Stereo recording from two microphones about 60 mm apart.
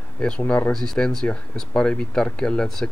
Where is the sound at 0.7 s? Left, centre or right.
Centre.